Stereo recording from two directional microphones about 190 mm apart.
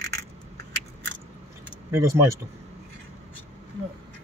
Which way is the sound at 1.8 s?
15° right (ahead or behind).